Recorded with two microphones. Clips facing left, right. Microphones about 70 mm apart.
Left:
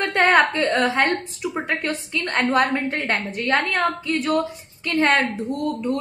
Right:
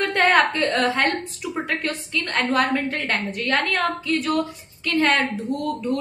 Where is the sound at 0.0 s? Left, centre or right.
Centre.